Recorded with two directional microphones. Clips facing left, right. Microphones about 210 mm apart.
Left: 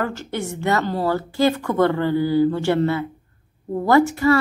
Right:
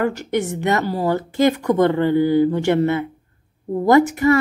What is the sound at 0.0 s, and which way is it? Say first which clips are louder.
A woman's voice: right 5 dB; 15° right (ahead or behind).